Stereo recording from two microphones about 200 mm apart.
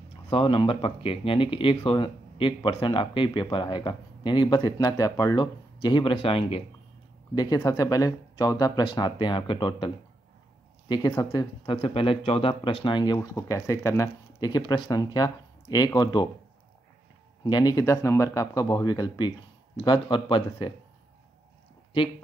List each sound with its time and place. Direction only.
0.3 s speech: 25° left (ahead or behind)
10.9 s speech: 20° left (ahead or behind)
17.5 s speech: 20° left (ahead or behind)